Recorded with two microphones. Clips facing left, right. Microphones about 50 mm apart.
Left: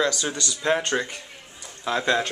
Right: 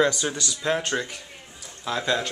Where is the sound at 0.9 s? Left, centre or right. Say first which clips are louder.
Left 2 dB; centre.